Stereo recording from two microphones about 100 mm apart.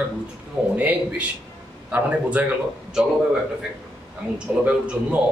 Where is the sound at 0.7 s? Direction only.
15° right (ahead or behind).